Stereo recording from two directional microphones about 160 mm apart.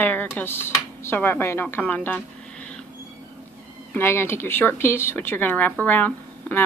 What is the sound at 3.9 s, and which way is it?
Speech, 15° left (ahead or behind).